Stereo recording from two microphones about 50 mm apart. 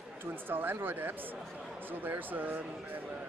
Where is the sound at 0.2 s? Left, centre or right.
Right.